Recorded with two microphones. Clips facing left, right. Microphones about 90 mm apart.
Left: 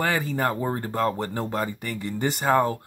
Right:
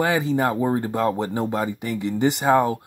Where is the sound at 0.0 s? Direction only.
15° right (ahead or behind).